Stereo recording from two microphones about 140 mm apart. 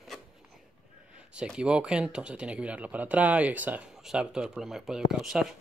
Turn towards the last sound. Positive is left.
turn(degrees=-5)  # may be behind; listen again after turning